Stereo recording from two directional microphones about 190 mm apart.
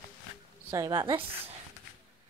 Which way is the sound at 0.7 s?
20° right (ahead or behind).